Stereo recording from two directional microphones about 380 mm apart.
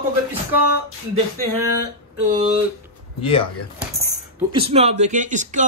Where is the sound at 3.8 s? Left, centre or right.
Centre.